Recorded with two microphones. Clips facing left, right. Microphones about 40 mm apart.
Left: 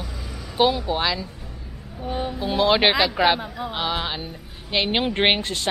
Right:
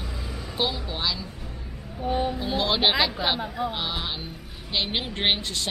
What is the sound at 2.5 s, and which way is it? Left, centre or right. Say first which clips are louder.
Speech: left 6 dB; centre.